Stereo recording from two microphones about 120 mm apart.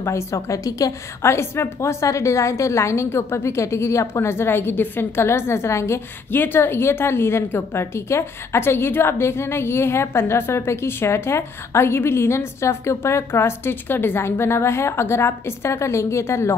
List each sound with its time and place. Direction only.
0.0 s a woman's voice: 25° left (ahead or behind)